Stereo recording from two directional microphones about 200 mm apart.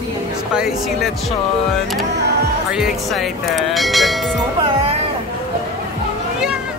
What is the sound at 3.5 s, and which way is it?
Speech, centre (ahead or behind).